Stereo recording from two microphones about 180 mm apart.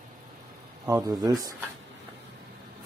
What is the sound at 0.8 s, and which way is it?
Speech, 20° right (ahead or behind).